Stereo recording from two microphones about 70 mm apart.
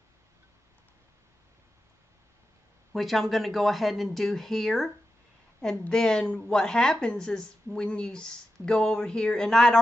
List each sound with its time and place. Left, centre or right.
2.9 s a woman's voice: centre